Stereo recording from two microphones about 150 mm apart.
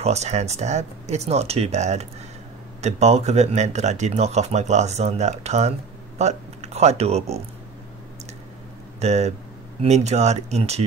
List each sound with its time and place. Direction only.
0.0 s speech: 45° right (ahead or behind)
9.0 s speech: 45° right (ahead or behind)